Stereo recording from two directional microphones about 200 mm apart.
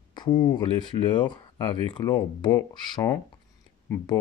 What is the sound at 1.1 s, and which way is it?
Speech, 20° left (ahead or behind).